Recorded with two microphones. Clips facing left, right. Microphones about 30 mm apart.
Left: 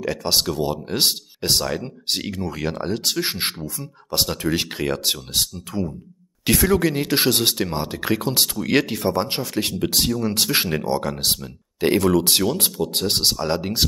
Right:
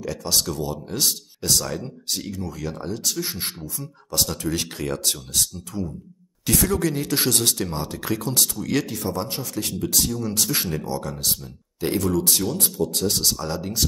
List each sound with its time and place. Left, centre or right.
0.0 s speech: left
4.1 s speech: left